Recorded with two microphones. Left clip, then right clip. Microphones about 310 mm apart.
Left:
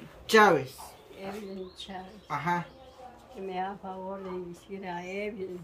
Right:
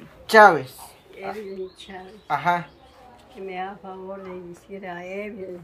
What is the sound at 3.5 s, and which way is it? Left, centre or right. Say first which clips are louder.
A woman's voice: right 2 dB; centre.